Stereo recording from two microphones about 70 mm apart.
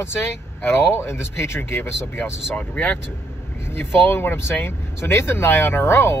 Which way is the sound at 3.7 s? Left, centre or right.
Left.